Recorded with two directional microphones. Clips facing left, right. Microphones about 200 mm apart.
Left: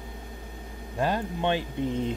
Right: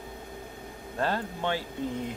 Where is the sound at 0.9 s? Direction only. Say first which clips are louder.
Left 3 dB; 15° left (ahead or behind).